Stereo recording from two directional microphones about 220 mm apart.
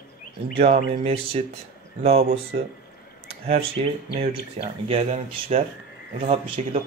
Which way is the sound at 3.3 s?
25° right (ahead or behind).